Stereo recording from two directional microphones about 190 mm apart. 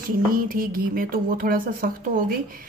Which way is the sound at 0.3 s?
50° right (ahead or behind).